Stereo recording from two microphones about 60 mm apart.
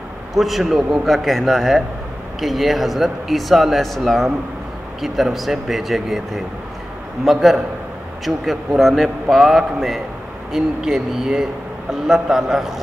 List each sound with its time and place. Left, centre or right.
0.3 s speech: centre
1.0 s speech: centre